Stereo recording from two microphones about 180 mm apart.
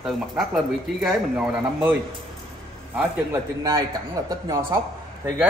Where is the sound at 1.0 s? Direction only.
5° right (ahead or behind).